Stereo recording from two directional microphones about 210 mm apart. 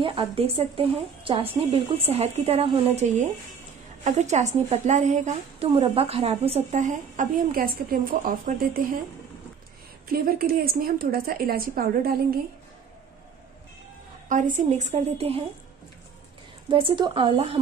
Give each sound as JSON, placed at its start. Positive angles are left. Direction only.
{"t": 0.0, "sound": "a woman's voice", "side_deg": -25}
{"t": 10.0, "sound": "a woman's voice", "side_deg": -45}
{"t": 14.3, "sound": "a woman's voice", "side_deg": -35}
{"t": 16.6, "sound": "a woman's voice", "side_deg": -25}